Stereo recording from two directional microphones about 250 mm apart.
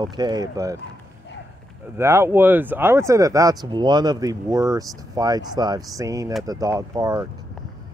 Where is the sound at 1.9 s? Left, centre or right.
Centre.